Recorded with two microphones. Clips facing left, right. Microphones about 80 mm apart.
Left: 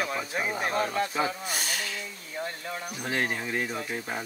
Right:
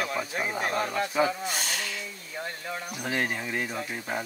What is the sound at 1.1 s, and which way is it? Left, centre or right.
Speech, centre.